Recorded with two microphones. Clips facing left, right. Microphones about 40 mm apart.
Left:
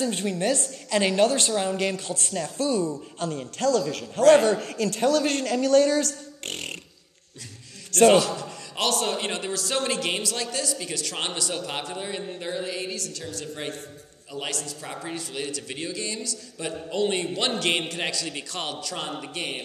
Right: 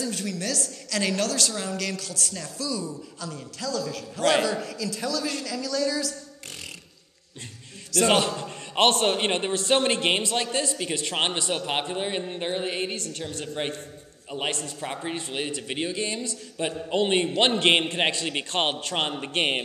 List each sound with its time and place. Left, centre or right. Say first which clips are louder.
0.0 s a woman's voice: left 5 dB; left
4.2 s a man's voice: left 6 dB; right
4.5 s a man's voice: left 5 dB; left
8.1 s a man's voice: left 3 dB; right